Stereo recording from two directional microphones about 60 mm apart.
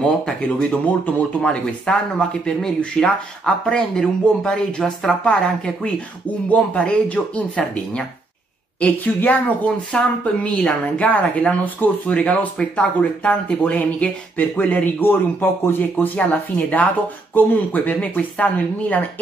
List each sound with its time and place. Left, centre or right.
0.6 s speech: left
6.5 s speech: left